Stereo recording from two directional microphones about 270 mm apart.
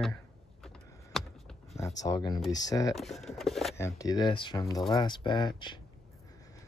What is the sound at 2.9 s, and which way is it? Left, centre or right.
Speech, centre.